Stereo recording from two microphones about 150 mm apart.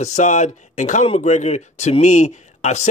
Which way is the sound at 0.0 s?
55° left (ahead or behind).